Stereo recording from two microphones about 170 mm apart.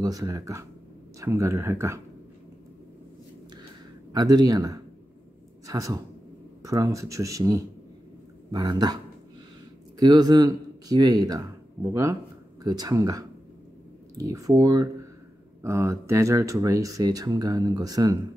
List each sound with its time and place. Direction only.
0.0 s speech: 20° right (ahead or behind)
4.1 s speech: 25° right (ahead or behind)